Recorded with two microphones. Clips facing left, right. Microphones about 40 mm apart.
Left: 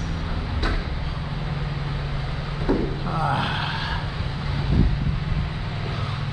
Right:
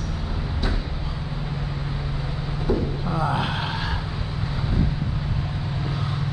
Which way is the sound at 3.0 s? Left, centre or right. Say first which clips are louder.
Even; centre.